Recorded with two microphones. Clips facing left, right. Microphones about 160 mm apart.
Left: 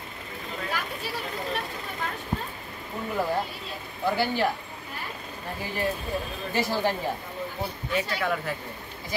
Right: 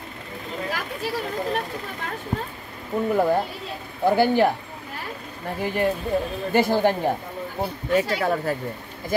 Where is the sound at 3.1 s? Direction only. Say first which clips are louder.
Right 6 dB; 50° right (ahead or behind).